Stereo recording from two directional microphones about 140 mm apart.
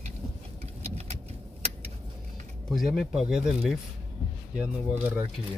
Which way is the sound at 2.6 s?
Centre (ahead or behind).